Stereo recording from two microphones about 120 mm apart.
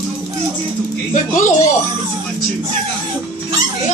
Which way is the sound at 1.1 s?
90° left.